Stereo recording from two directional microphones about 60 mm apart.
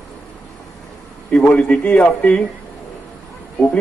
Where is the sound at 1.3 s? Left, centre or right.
Centre.